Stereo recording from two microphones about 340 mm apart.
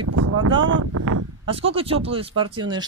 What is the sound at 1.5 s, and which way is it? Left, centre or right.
Speech, centre.